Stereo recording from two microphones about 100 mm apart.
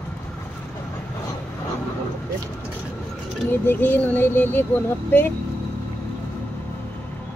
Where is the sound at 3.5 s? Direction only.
20° left (ahead or behind).